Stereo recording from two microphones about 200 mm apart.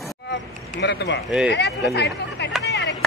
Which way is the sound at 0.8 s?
60° left (ahead or behind).